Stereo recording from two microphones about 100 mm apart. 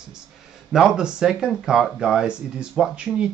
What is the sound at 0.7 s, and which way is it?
Speech, 5° right (ahead or behind).